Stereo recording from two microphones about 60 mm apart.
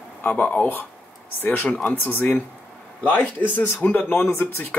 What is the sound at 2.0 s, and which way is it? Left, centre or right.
Speech, left.